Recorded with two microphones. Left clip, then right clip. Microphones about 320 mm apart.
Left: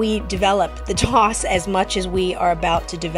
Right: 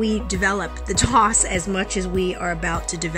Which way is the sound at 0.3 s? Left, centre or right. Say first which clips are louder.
Left 7 dB; centre.